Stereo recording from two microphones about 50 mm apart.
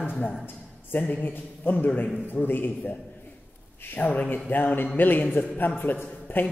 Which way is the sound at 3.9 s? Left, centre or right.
Left.